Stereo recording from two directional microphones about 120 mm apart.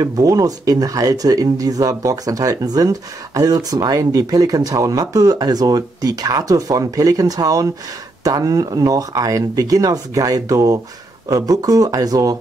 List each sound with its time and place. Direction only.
0.0 s speech: 30° right (ahead or behind)